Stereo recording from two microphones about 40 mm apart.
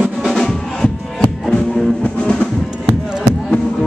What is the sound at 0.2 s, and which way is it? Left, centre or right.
Drum, centre.